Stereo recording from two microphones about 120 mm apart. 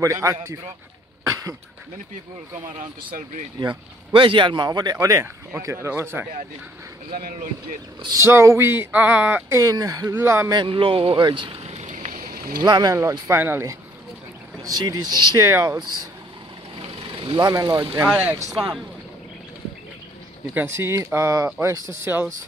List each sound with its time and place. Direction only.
0.0 s speech: 25° right (ahead or behind)
1.2 s cough: 25° right (ahead or behind)
3.6 s speech: 45° right (ahead or behind); by 6.2 s 20° right (ahead or behind)
8.2 s speech: 25° right (ahead or behind)
9.5 s speech: 30° right (ahead or behind)
10.0 s speech: 20° right (ahead or behind)
10.5 s speech: 45° right (ahead or behind); by 12.1 s 65° right (ahead or behind)
12.6 s speech: 35° right (ahead or behind); by 13.7 s 20° right (ahead or behind)
14.6 s speech: 30° right (ahead or behind)
15.3 s speech: 25° right (ahead or behind)
16.7 s vehicle: 45° right (ahead or behind)
17.5 s speech: 30° right (ahead or behind)
18.1 s speech: 15° right (ahead or behind)
20.5 s speech: 20° right (ahead or behind)